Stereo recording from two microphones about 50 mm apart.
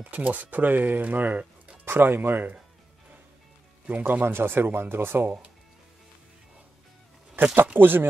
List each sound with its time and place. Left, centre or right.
0.1 s speech: right
3.9 s speech: right
7.5 s speech: right